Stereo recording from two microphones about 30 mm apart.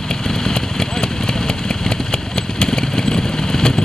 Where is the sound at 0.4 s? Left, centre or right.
Centre.